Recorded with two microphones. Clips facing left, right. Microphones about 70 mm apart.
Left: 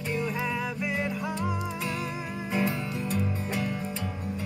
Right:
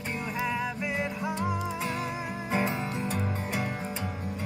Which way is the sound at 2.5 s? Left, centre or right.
Right.